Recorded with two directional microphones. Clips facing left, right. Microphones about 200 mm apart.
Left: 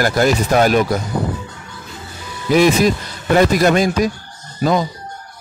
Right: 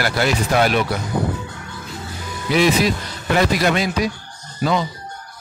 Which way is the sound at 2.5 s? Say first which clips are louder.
Left 4 dB; 45° left (ahead or behind).